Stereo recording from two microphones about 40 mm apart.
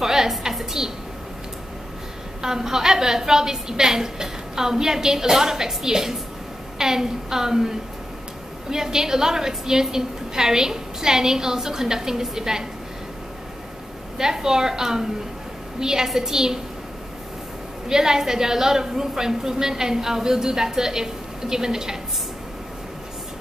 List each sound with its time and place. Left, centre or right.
0.0 s a sound: centre
2.4 s a woman's voice: centre
14.1 s a woman's voice: centre
17.8 s a woman's voice: centre